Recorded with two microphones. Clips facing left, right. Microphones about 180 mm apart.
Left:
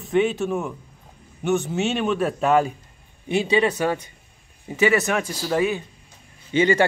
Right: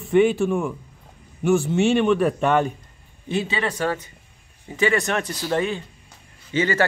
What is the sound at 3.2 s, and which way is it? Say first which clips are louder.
Speech: left 5 dB; 15° left (ahead or behind).